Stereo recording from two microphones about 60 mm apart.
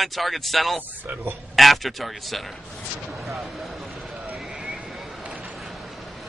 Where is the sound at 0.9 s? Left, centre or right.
Right.